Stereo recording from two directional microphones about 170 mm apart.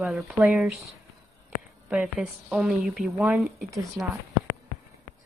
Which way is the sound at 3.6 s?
20° right (ahead or behind).